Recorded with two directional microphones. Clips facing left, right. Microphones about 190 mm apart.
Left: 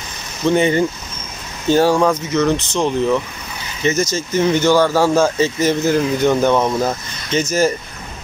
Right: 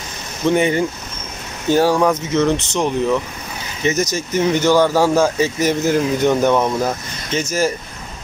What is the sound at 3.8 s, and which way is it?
Speech, 15° right (ahead or behind).